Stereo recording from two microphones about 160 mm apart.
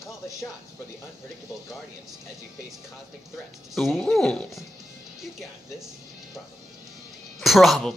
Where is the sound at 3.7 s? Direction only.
Centre (ahead or behind).